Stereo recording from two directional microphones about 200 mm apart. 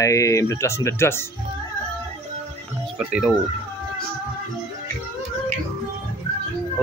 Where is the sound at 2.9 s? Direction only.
5° right (ahead or behind).